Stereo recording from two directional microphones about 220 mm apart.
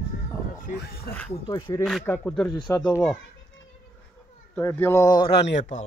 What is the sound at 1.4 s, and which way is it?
Speech, 20° left (ahead or behind).